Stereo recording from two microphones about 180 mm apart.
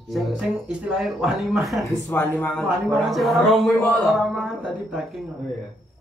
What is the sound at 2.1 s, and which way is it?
Speech, 10° left (ahead or behind).